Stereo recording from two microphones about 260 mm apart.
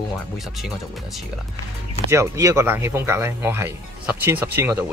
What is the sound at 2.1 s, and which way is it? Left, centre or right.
Speech, centre.